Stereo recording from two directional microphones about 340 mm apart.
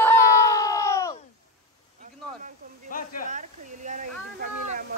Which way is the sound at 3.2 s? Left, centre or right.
Right.